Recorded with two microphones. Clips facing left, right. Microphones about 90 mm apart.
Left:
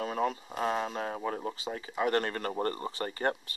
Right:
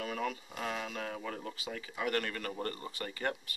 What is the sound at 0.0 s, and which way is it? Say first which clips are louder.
Speech: left 6 dB; 30° left (ahead or behind).